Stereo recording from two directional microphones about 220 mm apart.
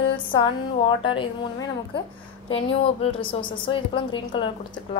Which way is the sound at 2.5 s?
25° left (ahead or behind).